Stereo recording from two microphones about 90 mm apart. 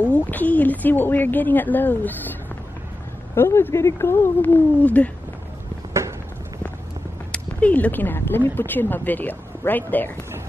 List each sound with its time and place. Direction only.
0.0 s speech: 20° left (ahead or behind)
3.3 s speech: 25° left (ahead or behind)
7.3 s speech: 15° left (ahead or behind)